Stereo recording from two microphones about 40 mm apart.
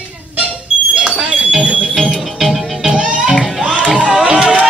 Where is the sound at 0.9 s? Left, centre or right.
Right.